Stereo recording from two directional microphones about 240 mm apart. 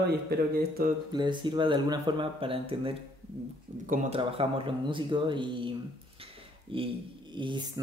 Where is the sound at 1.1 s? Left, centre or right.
Centre.